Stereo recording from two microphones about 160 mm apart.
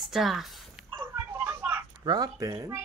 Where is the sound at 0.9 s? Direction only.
15° right (ahead or behind).